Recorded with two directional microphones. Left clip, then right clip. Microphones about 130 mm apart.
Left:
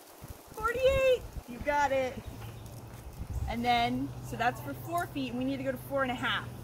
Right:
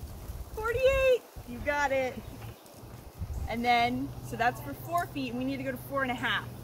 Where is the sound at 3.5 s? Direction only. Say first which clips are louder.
Right 2 dB; 15° right (ahead or behind).